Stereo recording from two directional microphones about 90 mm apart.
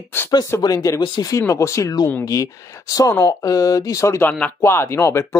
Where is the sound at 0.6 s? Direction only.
40° left (ahead or behind).